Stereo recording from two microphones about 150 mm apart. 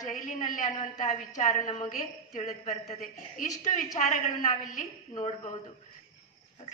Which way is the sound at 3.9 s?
55° left (ahead or behind).